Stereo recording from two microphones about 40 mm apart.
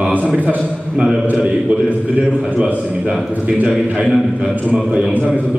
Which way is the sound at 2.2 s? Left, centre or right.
Right.